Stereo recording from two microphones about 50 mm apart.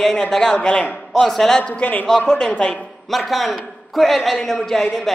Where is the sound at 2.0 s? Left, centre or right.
Centre.